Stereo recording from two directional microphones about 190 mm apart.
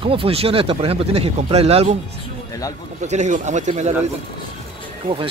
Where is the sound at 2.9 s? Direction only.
40° right (ahead or behind).